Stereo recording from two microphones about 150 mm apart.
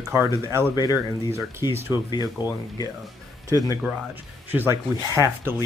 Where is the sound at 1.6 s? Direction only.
25° left (ahead or behind).